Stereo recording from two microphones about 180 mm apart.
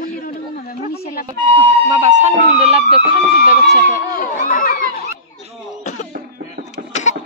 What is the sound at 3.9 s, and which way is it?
Speech, 50° left (ahead or behind).